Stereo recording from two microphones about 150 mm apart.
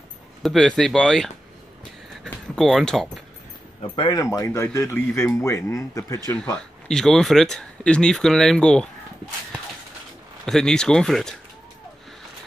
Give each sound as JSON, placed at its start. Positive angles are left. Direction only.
{"t": 0.4, "sound": "speech", "side_deg": 0}
{"t": 2.2, "sound": "a sound", "side_deg": 5}
{"t": 3.8, "sound": "speech", "side_deg": 35}
{"t": 6.3, "sound": "speech", "side_deg": 5}
{"t": 10.4, "sound": "speech", "side_deg": 5}